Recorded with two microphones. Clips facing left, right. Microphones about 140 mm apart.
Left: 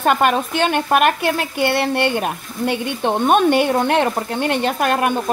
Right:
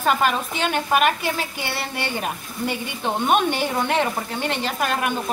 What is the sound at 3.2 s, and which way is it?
Speech, 50° left (ahead or behind).